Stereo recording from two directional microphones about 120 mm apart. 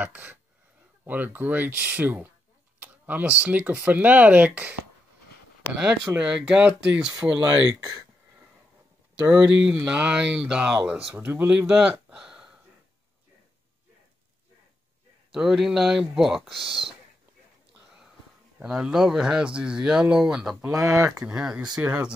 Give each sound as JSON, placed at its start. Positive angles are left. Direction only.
{"t": 0.0, "sound": "speech", "side_deg": -15}
{"t": 7.8, "sound": "speech", "side_deg": -30}
{"t": 9.2, "sound": "speech", "side_deg": -15}
{"t": 15.3, "sound": "speech", "side_deg": -5}
{"t": 16.6, "sound": "speech", "side_deg": -50}
{"t": 18.6, "sound": "speech", "side_deg": -5}
{"t": 20.9, "sound": "speech", "side_deg": -30}
{"t": 21.4, "sound": "speech", "side_deg": -10}